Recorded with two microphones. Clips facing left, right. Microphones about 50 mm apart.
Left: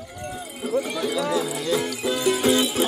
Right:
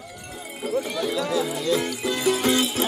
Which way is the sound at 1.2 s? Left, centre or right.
Centre.